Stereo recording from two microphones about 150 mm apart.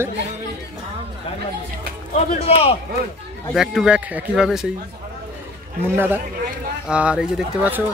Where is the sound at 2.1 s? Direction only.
40° left (ahead or behind).